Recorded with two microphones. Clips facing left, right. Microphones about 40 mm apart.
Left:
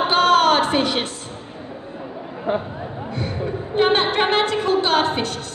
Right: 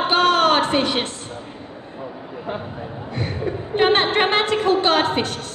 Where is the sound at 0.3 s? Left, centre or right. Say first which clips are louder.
Left 1 dB; centre.